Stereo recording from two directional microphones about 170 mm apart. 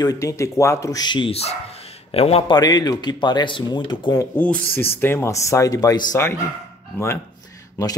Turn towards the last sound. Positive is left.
turn(degrees=20)  # may be behind; listen again after turning